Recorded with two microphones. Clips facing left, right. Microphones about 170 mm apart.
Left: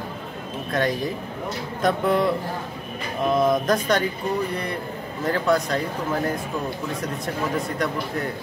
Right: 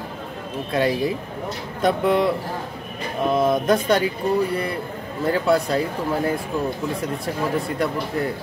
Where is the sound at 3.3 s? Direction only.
5° right (ahead or behind).